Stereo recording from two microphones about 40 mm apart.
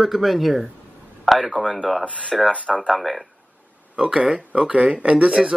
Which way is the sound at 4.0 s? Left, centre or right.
Right.